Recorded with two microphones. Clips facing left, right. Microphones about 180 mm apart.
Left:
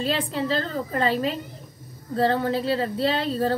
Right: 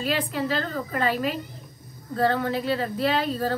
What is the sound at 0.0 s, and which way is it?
A woman's voice, 30° left (ahead or behind).